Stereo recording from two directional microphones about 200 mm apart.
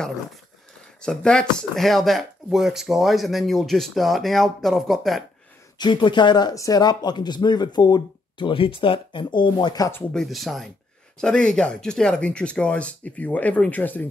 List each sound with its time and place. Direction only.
1.0 s speech: 5° left (ahead or behind)
5.8 s speech: 25° left (ahead or behind)
10.2 s speech: centre (ahead or behind)